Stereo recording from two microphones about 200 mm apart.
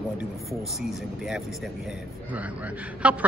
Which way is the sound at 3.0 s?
5° right (ahead or behind).